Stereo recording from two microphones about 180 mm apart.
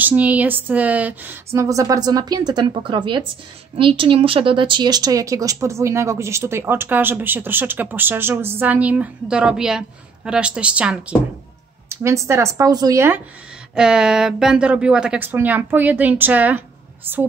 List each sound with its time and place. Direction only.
0.0 s a woman's voice: 10° right (ahead or behind)
13.7 s speech: 5° right (ahead or behind)